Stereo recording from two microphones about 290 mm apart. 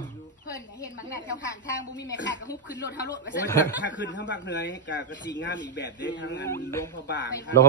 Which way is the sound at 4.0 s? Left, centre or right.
Left.